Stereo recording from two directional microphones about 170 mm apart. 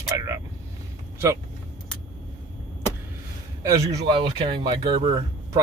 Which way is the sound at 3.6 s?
25° right (ahead or behind).